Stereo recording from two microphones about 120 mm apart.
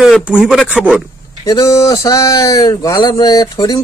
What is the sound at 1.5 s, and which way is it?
Speech, 35° left (ahead or behind).